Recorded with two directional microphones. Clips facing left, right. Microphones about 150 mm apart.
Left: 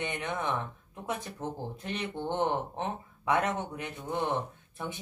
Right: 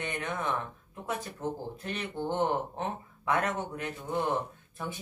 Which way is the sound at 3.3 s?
25° left (ahead or behind).